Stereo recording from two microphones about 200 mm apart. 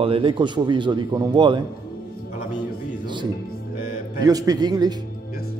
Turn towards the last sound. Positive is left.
turn(degrees=-20)  # may be behind; listen again after turning